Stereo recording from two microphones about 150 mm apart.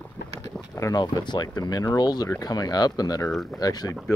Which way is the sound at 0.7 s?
25° left (ahead or behind).